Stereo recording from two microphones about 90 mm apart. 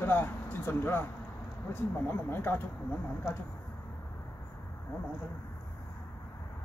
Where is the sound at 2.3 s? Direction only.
25° left (ahead or behind).